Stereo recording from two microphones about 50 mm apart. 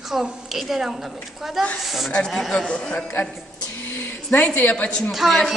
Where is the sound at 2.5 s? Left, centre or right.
Centre.